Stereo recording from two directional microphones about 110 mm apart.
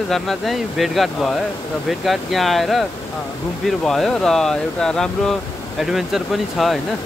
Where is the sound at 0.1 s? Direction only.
Centre (ahead or behind).